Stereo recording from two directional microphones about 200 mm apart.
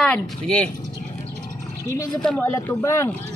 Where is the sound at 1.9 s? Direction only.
20° left (ahead or behind).